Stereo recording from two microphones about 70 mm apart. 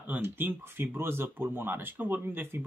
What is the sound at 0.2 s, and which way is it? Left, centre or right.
Speech, right.